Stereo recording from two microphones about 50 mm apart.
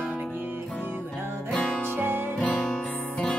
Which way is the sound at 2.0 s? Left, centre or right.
Right.